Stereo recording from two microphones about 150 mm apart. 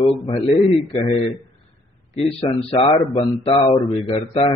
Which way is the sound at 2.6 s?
35° left (ahead or behind).